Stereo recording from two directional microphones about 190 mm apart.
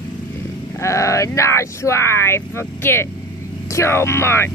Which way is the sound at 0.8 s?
15° left (ahead or behind).